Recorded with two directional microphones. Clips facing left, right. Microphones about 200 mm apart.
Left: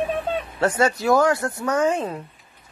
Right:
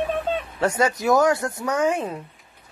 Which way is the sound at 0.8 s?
20° right (ahead or behind).